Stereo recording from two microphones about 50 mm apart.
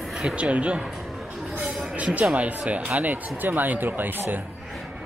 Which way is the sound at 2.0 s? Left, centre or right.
Right.